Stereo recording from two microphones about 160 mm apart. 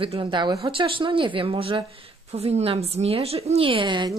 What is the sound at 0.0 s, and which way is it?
A woman's voice, 30° right (ahead or behind).